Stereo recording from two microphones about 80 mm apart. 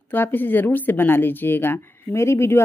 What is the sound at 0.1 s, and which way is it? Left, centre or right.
A woman's voice, left.